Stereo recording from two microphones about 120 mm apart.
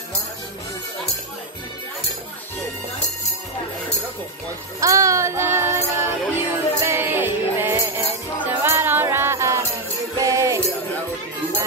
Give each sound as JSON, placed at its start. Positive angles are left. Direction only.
{"t": 4.7, "sound": "music", "side_deg": -25}